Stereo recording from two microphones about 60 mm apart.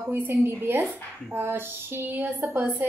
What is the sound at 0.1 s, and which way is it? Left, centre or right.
A woman's voice, right.